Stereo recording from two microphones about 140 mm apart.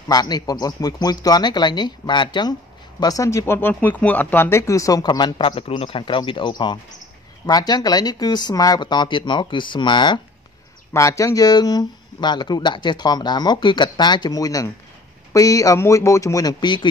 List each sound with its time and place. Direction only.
0.1 s speech: 30° left (ahead or behind)
10.9 s speech: 20° left (ahead or behind)